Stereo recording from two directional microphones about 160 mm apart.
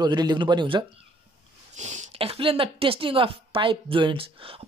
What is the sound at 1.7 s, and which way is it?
Speech, 50° right (ahead or behind).